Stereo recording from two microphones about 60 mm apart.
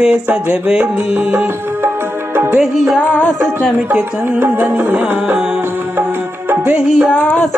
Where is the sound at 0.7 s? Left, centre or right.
Right.